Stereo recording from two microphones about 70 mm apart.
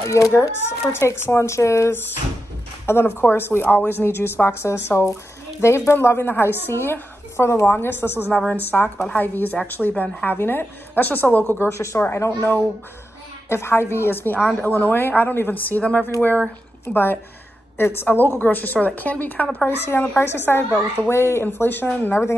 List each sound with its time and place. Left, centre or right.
0.0 s speech: left
0.3 s a woman's voice: left
19.9 s speech: left